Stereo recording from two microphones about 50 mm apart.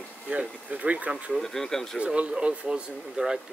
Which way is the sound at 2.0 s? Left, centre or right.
Right.